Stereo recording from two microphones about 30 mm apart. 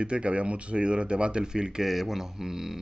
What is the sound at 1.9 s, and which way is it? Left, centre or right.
Speech, centre.